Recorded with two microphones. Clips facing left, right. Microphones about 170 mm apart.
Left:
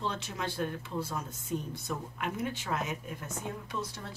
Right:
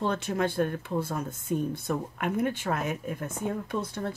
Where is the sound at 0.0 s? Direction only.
50° right (ahead or behind).